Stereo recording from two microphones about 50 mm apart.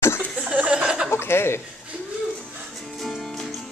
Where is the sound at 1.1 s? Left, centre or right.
Left.